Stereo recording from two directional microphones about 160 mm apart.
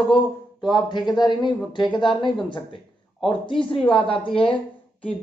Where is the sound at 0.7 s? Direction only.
25° left (ahead or behind).